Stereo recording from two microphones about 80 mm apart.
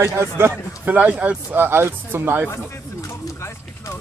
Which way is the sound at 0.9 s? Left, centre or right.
Centre.